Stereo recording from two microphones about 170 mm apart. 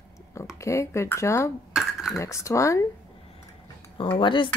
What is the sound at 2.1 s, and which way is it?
Speech, 20° left (ahead or behind).